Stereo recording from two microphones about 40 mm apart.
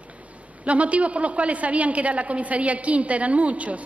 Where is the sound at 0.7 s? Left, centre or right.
Right.